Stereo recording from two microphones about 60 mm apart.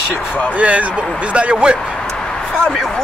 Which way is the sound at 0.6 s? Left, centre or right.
Right.